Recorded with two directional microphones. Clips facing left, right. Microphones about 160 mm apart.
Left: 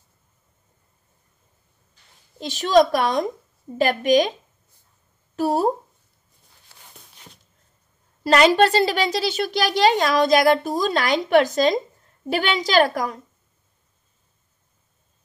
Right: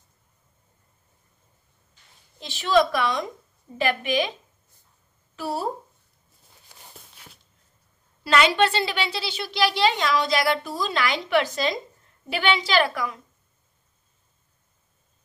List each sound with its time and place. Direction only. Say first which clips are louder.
2.3 s a woman's voice: left 4 dB; 40° left (ahead or behind)
5.3 s speech: left 8 dB; 45° left (ahead or behind)
6.7 s a sound: right 2 dB; 15° right (ahead or behind)
8.2 s a woman's voice: left 5 dB; 40° left (ahead or behind)